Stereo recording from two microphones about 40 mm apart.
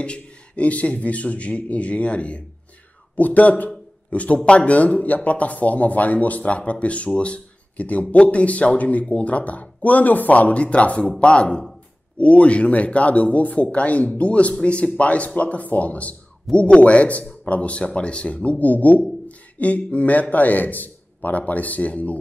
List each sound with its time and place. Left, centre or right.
0.0 s a man's voice: left
18.6 s a man's voice: left